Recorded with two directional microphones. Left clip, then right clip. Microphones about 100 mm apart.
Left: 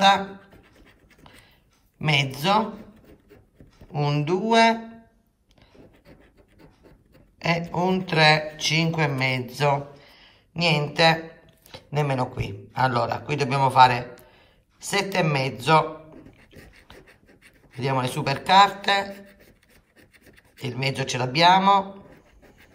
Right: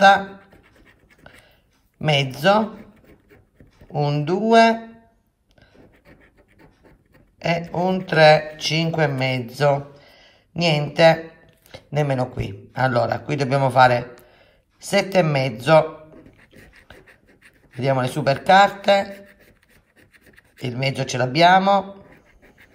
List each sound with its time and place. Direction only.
0.8 s pant: 25° right (ahead or behind)
2.0 s speech: 25° right (ahead or behind)
2.8 s a sound: 5° right (ahead or behind)
4.0 s speech: 20° right (ahead or behind)
7.3 s a man's voice: 15° right (ahead or behind); by 15.9 s 35° right (ahead or behind)
16.3 s beatboxing: 25° right (ahead or behind)
17.7 s speech: 30° right (ahead or behind)
20.5 s speech: 30° right (ahead or behind)